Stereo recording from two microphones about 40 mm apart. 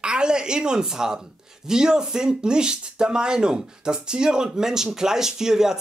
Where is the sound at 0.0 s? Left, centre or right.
Right.